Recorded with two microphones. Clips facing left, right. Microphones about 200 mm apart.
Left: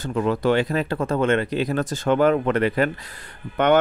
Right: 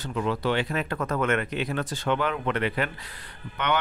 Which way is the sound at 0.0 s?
45° left (ahead or behind).